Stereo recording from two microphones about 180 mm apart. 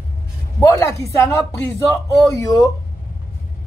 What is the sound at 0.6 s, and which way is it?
Speech, 15° left (ahead or behind).